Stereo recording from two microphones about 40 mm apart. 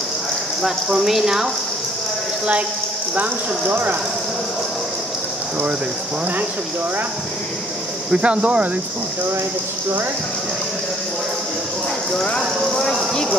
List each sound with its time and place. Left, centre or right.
0.6 s speech: centre
8.1 s speech: right
12.1 s speech: left